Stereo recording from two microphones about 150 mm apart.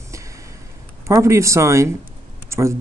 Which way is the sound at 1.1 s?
20° right (ahead or behind).